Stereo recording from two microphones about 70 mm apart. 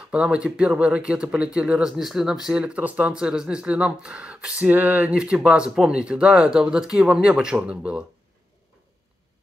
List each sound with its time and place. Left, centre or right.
0.1 s speech: centre
5.1 s speech: centre